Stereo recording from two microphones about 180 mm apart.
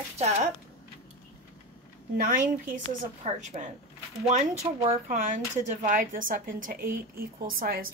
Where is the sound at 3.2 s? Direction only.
40° right (ahead or behind).